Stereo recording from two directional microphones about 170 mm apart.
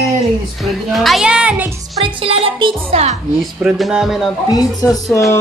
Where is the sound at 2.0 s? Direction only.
35° right (ahead or behind).